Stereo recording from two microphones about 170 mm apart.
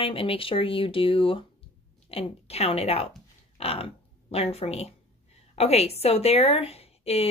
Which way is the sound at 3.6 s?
35° left (ahead or behind).